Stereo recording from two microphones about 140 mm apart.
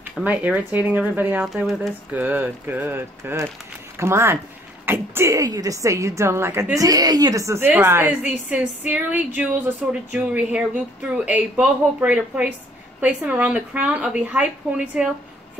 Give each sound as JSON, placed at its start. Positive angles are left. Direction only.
{"t": 0.2, "sound": "speech", "side_deg": -10}